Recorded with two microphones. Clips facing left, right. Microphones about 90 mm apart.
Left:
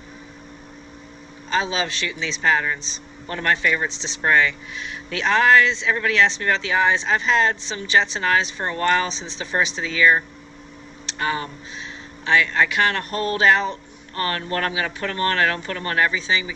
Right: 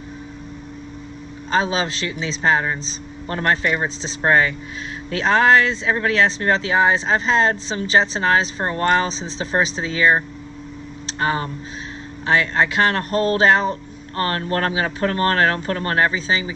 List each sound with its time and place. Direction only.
1.5 s speech: 35° right (ahead or behind)